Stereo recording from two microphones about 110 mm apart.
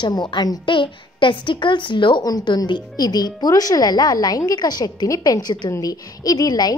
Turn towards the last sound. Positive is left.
turn(degrees=35)  # may be behind; listen again after turning